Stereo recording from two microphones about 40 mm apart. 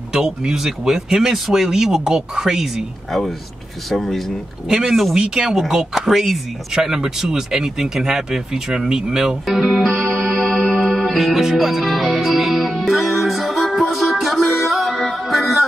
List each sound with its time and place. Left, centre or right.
0.1 s speech: centre
3.1 s speech: centre
4.6 s speech: centre
9.5 s music: centre
14.9 s music: centre